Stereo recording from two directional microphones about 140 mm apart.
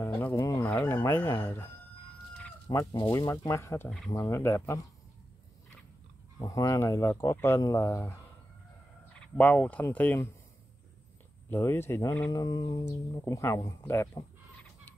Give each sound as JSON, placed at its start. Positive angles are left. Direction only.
{"t": 0.2, "sound": "speech", "side_deg": 20}
{"t": 2.7, "sound": "speech", "side_deg": 25}
{"t": 6.4, "sound": "speech", "side_deg": 25}
{"t": 9.2, "sound": "speech", "side_deg": 10}
{"t": 11.5, "sound": "speech", "side_deg": 15}